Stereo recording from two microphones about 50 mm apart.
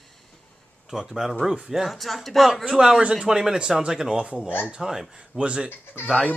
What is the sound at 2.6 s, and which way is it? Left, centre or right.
Speech, centre.